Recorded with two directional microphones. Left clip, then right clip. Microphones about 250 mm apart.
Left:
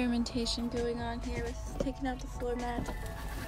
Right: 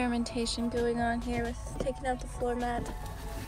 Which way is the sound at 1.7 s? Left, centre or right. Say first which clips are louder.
Right 3 dB; centre.